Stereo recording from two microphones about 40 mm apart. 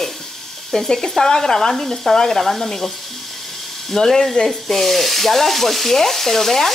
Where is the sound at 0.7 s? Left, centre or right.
Centre.